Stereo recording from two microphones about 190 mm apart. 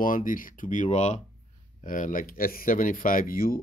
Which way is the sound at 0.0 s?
45° left (ahead or behind).